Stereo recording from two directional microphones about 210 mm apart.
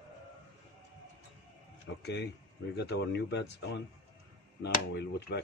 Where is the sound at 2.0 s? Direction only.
55° left (ahead or behind).